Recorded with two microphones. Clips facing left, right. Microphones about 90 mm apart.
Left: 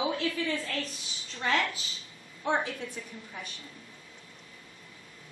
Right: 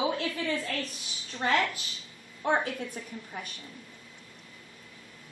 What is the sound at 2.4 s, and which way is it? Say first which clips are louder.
Speech: right 2 dB; 50° right (ahead or behind).